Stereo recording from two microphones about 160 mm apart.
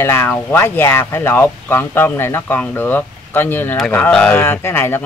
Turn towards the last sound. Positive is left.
turn(degrees=15)  # may be behind; listen again after turning